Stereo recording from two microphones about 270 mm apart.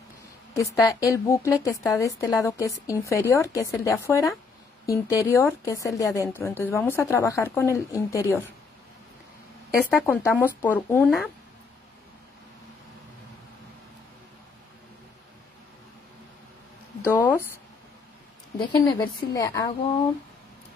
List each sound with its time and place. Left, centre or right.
0.6 s a woman's voice: centre
9.8 s a woman's voice: centre
17.0 s a woman's voice: centre
18.6 s a woman's voice: centre